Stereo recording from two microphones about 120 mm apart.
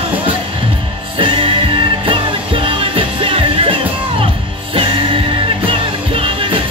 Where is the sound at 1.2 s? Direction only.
45° right (ahead or behind).